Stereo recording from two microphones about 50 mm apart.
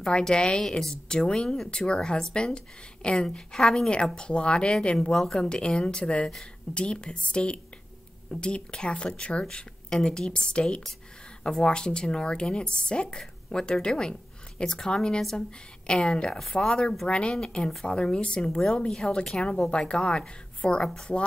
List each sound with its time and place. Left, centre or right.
0.0 s a woman's voice: centre
3.9 s speech: centre
5.1 s a woman's voice: centre
5.5 s a woman's voice: centre
20.8 s a woman's voice: centre